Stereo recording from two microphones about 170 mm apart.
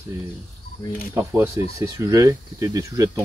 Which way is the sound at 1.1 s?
15° right (ahead or behind).